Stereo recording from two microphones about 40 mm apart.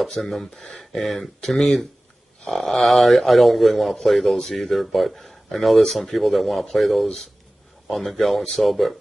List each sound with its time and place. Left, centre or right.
0.2 s speech: centre
0.7 s speech: centre